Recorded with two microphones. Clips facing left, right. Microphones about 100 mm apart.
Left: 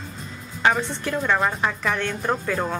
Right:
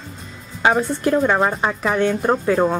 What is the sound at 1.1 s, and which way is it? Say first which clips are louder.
Speech: right 4 dB; 30° right (ahead or behind).